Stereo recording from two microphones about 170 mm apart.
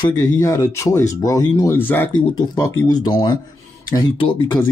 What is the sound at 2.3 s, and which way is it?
Speech, 25° left (ahead or behind).